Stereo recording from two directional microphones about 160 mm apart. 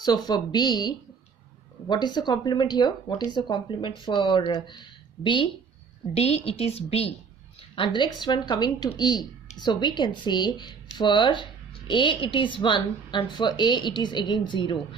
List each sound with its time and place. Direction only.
0.0 s a woman's voice: 25° left (ahead or behind)